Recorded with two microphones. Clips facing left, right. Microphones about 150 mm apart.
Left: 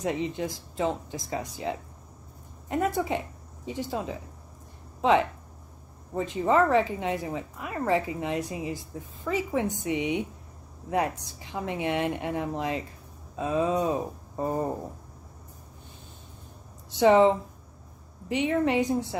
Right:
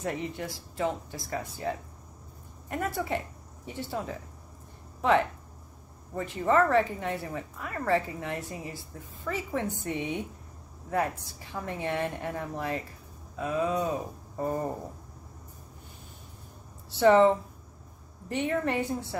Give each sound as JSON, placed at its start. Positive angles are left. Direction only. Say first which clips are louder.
{"t": 0.0, "sound": "a woman's voice", "louder": "left 4 dB", "side_deg": 20}
{"t": 6.1, "sound": "a woman's voice", "louder": "left 2 dB", "side_deg": 20}
{"t": 11.5, "sound": "a woman's voice", "louder": "left 3 dB", "side_deg": 15}
{"t": 17.0, "sound": "a woman's voice", "louder": "left 1 dB", "side_deg": 15}